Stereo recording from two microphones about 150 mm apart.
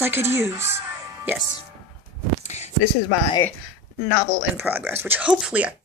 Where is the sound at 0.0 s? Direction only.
15° right (ahead or behind).